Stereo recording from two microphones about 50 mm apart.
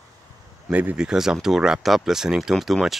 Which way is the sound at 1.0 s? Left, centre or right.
Centre.